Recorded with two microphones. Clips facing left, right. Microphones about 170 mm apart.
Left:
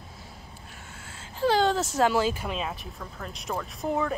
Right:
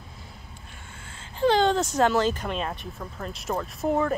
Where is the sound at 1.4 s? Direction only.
5° left (ahead or behind).